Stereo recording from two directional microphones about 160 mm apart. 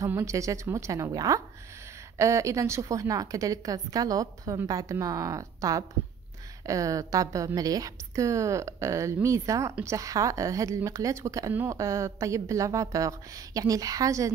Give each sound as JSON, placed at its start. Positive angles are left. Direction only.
{"t": 0.0, "sound": "speech", "side_deg": -20}